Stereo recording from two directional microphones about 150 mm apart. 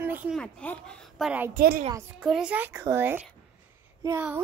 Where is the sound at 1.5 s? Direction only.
80° right.